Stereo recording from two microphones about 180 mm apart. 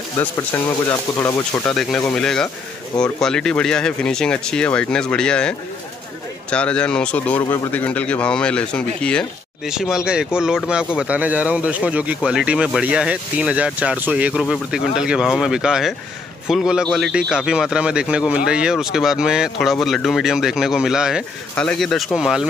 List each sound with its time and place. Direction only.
0.2 s speech: 15° left (ahead or behind); by 22.5 s centre (ahead or behind)